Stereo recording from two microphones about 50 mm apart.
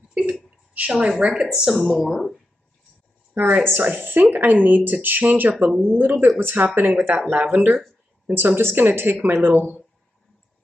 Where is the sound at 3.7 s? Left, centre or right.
Right.